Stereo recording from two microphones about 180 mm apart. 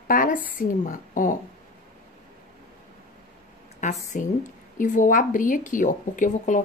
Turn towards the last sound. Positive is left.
turn(degrees=45)  # may be behind; listen again after turning